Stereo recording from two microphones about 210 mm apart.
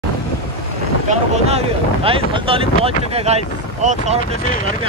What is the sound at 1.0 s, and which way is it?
Speech, 30° right (ahead or behind).